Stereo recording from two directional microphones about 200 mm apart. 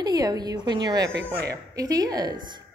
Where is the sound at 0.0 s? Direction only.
20° right (ahead or behind).